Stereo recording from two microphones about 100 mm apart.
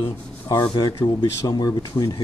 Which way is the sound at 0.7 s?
45° left (ahead or behind).